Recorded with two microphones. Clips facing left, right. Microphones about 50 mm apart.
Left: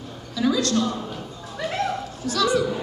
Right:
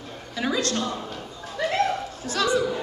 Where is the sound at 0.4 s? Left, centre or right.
Right.